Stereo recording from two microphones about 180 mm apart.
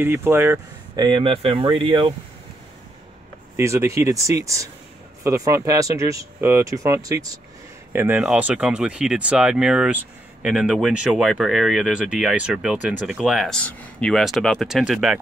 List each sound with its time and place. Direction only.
0.0 s speech: 10° right (ahead or behind)
0.9 s speech: 25° right (ahead or behind)
3.5 s speech: 15° right (ahead or behind)